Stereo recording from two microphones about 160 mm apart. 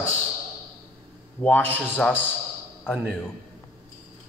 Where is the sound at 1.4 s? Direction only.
10° left (ahead or behind).